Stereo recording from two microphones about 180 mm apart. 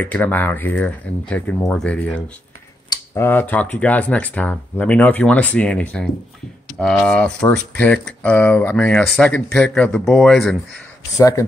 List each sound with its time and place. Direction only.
0.0 s speech: 10° left (ahead or behind)
11.1 s speech: 20° left (ahead or behind)